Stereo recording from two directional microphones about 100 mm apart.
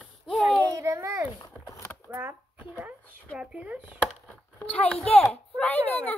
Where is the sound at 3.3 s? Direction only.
10° right (ahead or behind).